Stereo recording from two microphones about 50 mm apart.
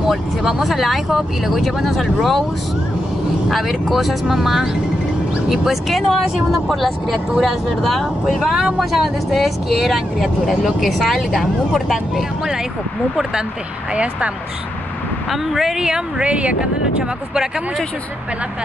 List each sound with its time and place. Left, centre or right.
0.1 s speech: centre
3.4 s speech: centre
15.8 s speech: centre